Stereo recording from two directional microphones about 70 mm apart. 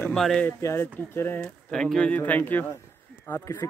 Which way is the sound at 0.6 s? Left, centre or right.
Left.